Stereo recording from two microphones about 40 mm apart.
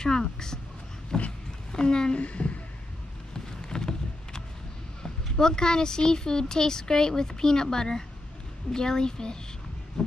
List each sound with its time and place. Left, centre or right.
0.0 s a woman's voice: centre
2.1 s a sound: left
3.3 s vehicle: centre
5.0 s speech: centre